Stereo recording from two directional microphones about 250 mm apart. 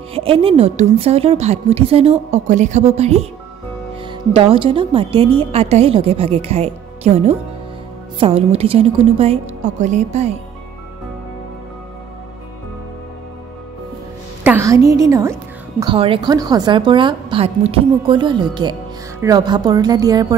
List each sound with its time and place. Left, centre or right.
0.1 s a woman's voice: right
14.4 s a woman's voice: centre